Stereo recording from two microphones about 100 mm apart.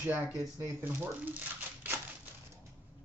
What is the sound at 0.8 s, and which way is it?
Speech, 15° right (ahead or behind).